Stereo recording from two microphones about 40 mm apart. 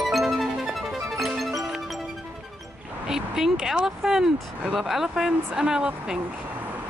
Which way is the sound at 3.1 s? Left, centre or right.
Centre.